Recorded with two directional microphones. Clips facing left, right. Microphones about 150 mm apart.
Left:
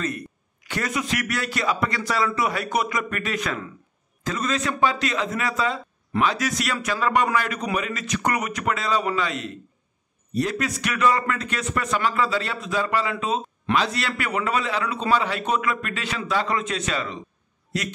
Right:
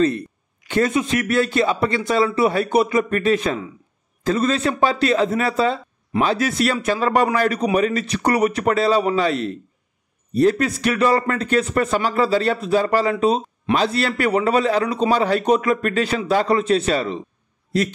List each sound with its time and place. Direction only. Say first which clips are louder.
0.7 s a man's voice: right 8 dB; 25° right (ahead or behind)